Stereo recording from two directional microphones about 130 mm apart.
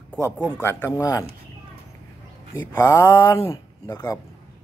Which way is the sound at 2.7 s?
20° left (ahead or behind).